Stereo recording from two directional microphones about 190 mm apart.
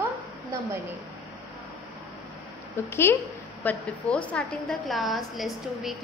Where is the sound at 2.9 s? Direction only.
15° left (ahead or behind).